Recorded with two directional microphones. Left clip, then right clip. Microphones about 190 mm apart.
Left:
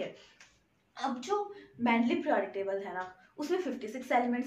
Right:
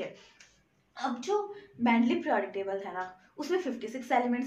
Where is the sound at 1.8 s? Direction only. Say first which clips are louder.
Right 2 dB; 20° right (ahead or behind).